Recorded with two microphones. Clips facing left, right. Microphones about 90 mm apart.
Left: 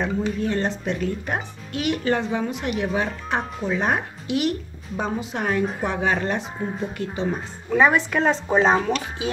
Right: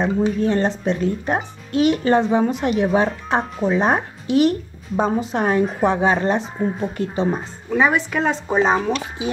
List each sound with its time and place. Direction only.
0.0 s speech: 30° right (ahead or behind)
6.6 s speech: 5° right (ahead or behind)
7.0 s speech: 35° right (ahead or behind)
7.7 s speech: 5° right (ahead or behind)